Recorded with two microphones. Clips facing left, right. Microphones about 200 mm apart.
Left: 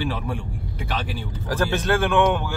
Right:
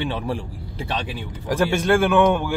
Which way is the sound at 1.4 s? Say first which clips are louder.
Right 3 dB; 15° right (ahead or behind).